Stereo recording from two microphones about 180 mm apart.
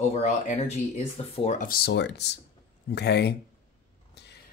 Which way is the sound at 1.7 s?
60° left (ahead or behind).